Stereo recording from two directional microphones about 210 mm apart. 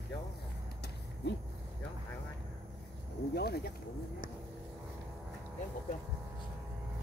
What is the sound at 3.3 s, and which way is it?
Speech, 50° left (ahead or behind).